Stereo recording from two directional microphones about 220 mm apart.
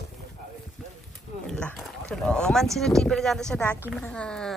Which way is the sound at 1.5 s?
5° left (ahead or behind).